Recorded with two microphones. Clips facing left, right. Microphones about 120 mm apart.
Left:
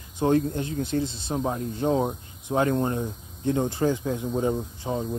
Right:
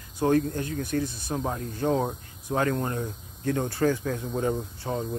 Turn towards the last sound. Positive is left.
turn(degrees=15)  # may be behind; listen again after turning